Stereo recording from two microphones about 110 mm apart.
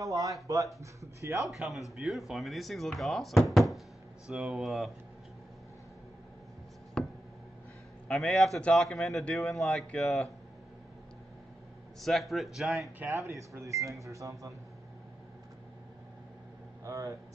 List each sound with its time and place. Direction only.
0.0 s speech: 30° right (ahead or behind)
1.5 s a man's voice: centre (ahead or behind)
7.0 s a sound: 5° left (ahead or behind)
8.1 s a man's voice: centre (ahead or behind)
12.0 s a man's voice: centre (ahead or behind)
13.1 s speech: 25° right (ahead or behind)
16.8 s speech: 30° right (ahead or behind)